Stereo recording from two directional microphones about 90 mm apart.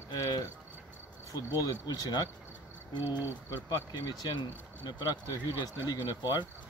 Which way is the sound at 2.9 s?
25° right (ahead or behind).